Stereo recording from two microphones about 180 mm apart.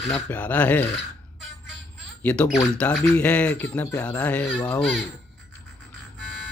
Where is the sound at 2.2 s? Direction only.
10° left (ahead or behind).